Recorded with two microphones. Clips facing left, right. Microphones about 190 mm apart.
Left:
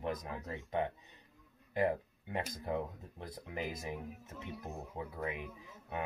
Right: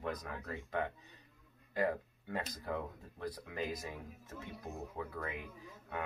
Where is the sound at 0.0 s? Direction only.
20° left (ahead or behind).